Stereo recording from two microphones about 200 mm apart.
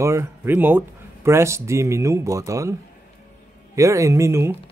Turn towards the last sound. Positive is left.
turn(degrees=-15)  # may be behind; listen again after turning